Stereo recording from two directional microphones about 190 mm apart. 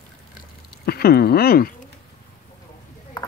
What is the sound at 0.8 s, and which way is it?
Speech, 55° left (ahead or behind).